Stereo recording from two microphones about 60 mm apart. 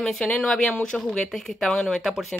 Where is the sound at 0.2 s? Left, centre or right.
Centre.